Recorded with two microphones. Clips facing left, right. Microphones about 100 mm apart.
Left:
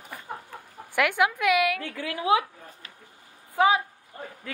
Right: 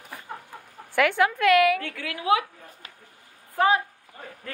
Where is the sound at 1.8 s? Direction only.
30° left (ahead or behind).